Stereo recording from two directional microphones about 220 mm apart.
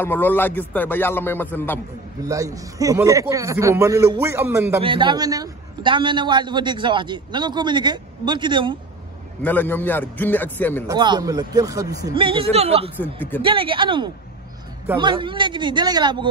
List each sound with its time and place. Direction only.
0.0 s a man's voice: 10° left (ahead or behind)
2.2 s a man's voice: 15° right (ahead or behind)
4.7 s a man's voice: 25° right (ahead or behind)
9.4 s a man's voice: 10° left (ahead or behind)
10.9 s a man's voice: 20° right (ahead or behind)
12.9 s a man's voice: 10° left (ahead or behind)
13.4 s a man's voice: 25° right (ahead or behind)